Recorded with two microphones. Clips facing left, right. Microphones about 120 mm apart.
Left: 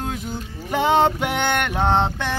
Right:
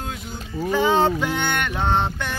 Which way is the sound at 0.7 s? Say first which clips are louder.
Left 1 dB; 65° left (ahead or behind).